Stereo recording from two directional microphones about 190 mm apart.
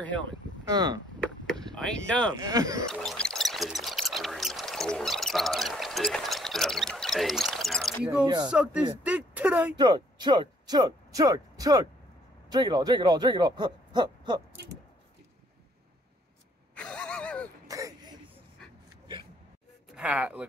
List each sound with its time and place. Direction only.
0.7 s speech: 20° right (ahead or behind)
1.2 s chop: 5° left (ahead or behind)
2.3 s speech: 20° right (ahead or behind)
2.9 s pour: 5° left (ahead or behind)
8.5 s speech: 5° right (ahead or behind)
9.8 s speech: 20° right (ahead or behind)
16.7 s a sound: 5° left (ahead or behind)
17.6 s throat clearing: 15° right (ahead or behind)
19.9 s speech: 5° right (ahead or behind)